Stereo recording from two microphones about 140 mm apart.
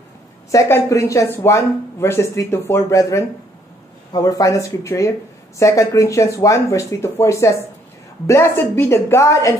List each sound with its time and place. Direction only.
0.5 s speech: 20° left (ahead or behind)